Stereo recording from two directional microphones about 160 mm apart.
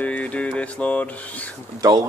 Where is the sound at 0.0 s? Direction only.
10° left (ahead or behind).